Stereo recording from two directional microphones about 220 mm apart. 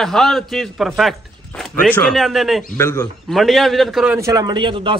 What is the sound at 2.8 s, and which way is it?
Speech, 10° left (ahead or behind).